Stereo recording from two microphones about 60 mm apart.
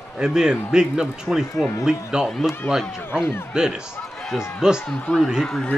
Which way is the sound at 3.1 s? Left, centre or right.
Left.